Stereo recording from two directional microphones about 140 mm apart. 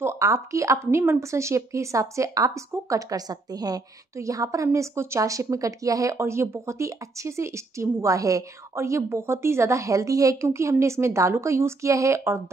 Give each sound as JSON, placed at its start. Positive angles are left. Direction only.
{"t": 0.0, "sound": "speech", "side_deg": -20}